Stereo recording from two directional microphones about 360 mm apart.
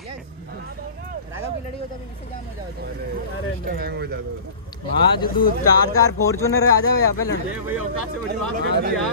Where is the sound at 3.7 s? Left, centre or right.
Right.